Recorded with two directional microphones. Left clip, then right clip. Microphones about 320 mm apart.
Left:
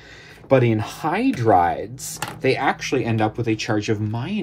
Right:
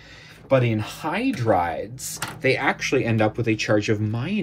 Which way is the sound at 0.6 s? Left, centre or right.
Left.